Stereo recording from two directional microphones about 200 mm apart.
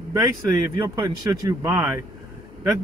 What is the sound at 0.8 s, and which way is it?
Speech, 15° right (ahead or behind).